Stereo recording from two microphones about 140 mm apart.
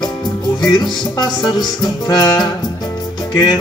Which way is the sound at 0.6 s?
30° left (ahead or behind).